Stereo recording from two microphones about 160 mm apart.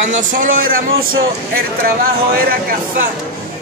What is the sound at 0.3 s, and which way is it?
Speech, 55° right (ahead or behind).